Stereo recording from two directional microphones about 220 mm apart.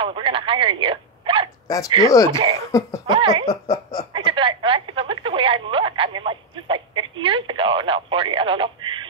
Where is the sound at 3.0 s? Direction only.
20° right (ahead or behind).